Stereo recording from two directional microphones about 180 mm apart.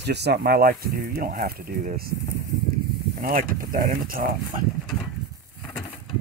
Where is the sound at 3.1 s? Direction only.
50° right (ahead or behind).